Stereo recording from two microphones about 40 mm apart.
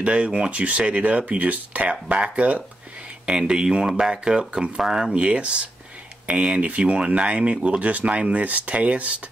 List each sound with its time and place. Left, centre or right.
0.0 s speech: right
1.9 s speech: right
5.1 s speech: right